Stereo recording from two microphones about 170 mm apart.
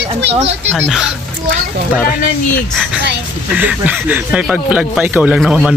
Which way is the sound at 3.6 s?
10° right (ahead or behind).